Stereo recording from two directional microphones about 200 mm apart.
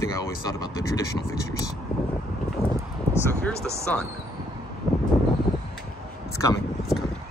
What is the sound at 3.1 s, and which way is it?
Speech, 10° left (ahead or behind).